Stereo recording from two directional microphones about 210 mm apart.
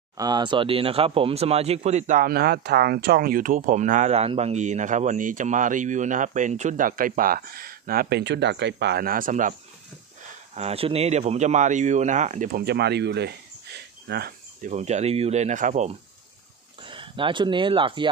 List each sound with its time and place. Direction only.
0.2 s speech: 20° right (ahead or behind); by 13.3 s 55° right (ahead or behind)
14.0 s cricket: 50° right (ahead or behind)
14.7 s speech: 30° right (ahead or behind)
16.8 s speech: 25° right (ahead or behind)